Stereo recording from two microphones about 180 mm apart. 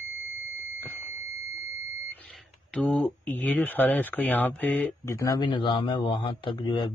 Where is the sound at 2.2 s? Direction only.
5° left (ahead or behind).